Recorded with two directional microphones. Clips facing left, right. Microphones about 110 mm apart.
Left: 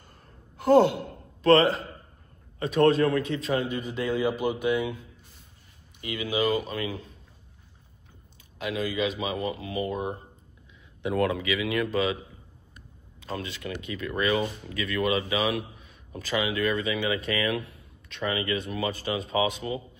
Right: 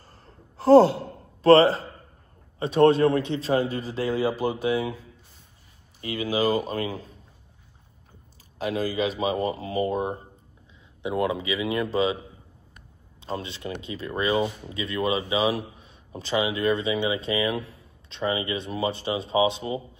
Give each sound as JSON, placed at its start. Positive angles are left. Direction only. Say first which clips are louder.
{"t": 0.0, "sound": "gasp", "louder": "right 2 dB", "side_deg": -30}
{"t": 2.6, "sound": "a man's voice", "louder": "right 3 dB", "side_deg": -30}
{"t": 8.5, "sound": "a man's voice", "louder": "right 3 dB", "side_deg": -35}
{"t": 11.0, "sound": "speech", "louder": "even", "side_deg": -20}
{"t": 13.2, "sound": "speech", "louder": "right 2 dB", "side_deg": -25}